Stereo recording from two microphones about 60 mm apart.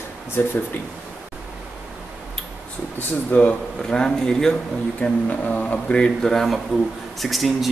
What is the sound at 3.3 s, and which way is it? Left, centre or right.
Speech, left.